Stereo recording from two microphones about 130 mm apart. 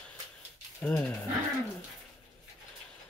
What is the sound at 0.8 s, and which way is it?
Speech, 10° left (ahead or behind).